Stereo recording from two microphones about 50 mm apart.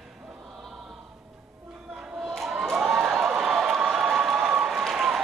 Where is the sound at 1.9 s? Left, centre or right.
Right.